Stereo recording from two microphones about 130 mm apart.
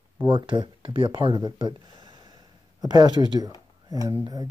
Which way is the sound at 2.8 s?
30° right (ahead or behind).